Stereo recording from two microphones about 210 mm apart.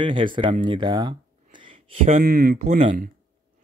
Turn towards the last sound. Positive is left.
turn(degrees=-35)  # may be behind; listen again after turning